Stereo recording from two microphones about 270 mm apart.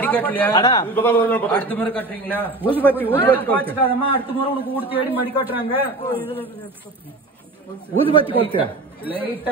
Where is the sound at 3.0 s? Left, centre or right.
Centre.